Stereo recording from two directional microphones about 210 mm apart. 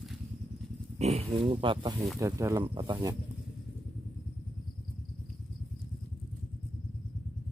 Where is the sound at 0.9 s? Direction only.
30° right (ahead or behind).